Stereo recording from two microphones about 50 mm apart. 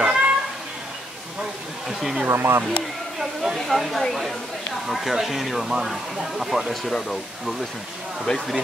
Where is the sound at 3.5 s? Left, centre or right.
Centre.